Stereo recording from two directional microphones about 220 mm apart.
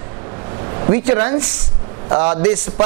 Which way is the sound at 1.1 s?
20° right (ahead or behind).